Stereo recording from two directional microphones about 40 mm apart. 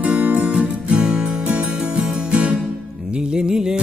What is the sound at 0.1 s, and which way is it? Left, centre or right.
Music, right.